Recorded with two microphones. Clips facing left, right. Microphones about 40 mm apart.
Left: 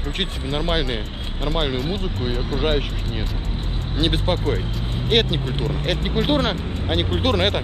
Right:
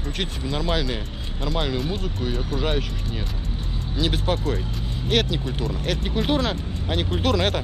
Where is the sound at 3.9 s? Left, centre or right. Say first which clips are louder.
Left 2 dB; left.